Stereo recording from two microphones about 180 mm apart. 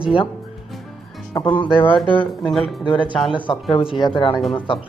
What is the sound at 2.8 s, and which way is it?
Speech, 25° left (ahead or behind).